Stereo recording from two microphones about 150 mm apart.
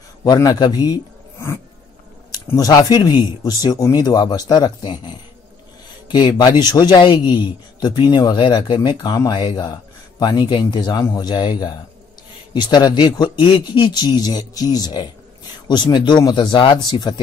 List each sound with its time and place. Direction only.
0.2 s a man's voice: 25° left (ahead or behind)
6.0 s speech: 30° left (ahead or behind)